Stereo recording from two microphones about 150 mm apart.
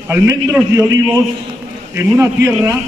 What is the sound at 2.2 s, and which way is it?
Speech, 10° right (ahead or behind).